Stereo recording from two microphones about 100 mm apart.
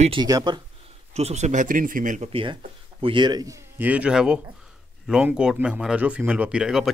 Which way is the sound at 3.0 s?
50° right (ahead or behind).